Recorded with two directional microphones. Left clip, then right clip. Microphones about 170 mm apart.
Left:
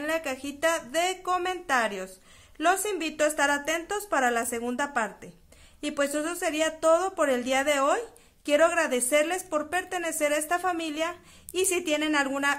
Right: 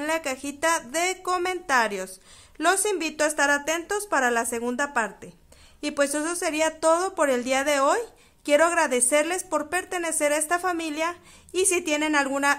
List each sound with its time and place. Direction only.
0.0 s a woman's voice: 30° right (ahead or behind)